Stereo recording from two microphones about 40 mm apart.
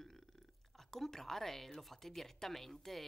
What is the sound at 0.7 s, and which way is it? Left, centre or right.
Speech, centre.